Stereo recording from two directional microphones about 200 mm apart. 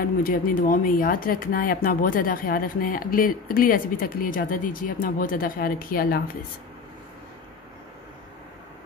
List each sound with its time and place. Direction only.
0.0 s speech: 45° left (ahead or behind)